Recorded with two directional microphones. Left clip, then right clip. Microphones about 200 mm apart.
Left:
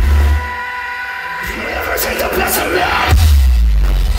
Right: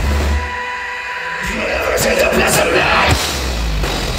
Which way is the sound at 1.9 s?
25° left (ahead or behind).